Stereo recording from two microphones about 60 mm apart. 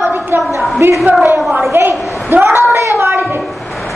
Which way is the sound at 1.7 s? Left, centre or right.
Right.